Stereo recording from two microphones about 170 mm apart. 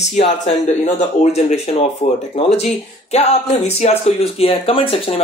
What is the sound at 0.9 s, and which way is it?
Speech, 40° left (ahead or behind).